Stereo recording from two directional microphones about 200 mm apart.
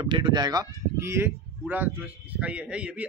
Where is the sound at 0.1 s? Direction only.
20° right (ahead or behind).